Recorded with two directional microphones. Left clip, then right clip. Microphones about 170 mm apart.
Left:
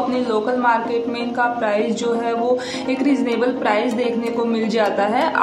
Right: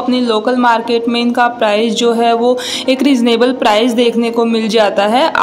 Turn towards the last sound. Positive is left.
turn(degrees=-50)  # may be behind; listen again after turning